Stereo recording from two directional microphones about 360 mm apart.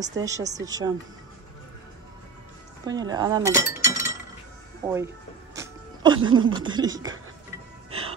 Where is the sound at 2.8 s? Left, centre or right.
Centre.